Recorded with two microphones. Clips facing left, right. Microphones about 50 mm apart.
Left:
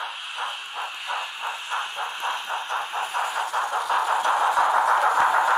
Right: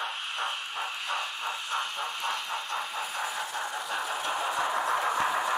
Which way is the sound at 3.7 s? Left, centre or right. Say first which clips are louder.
Left 9 dB; left.